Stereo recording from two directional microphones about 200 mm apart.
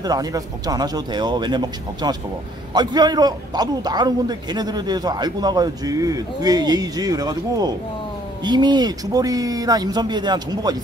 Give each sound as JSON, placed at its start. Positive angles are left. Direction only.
{"t": 0.0, "sound": "a man's voice", "side_deg": -20}